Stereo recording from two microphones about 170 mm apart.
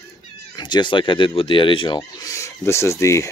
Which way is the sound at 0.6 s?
25° left (ahead or behind).